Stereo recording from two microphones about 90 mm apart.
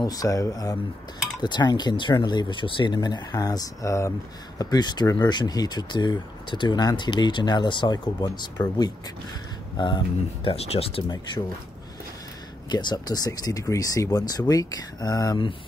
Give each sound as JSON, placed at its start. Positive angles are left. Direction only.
{"t": 0.0, "sound": "speech", "side_deg": 45}
{"t": 1.4, "sound": "speech", "side_deg": 55}
{"t": 4.6, "sound": "speech", "side_deg": 50}
{"t": 12.6, "sound": "speech", "side_deg": 55}